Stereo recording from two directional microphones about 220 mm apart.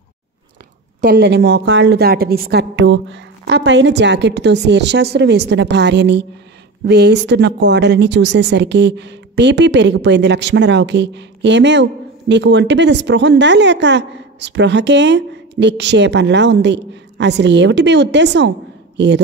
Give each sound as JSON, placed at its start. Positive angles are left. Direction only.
{"t": 1.0, "sound": "a woman's voice", "side_deg": -50}